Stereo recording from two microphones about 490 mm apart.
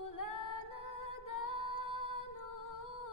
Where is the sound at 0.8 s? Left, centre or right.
Left.